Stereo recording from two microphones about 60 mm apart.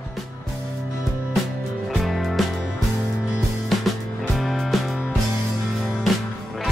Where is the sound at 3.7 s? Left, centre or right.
Centre.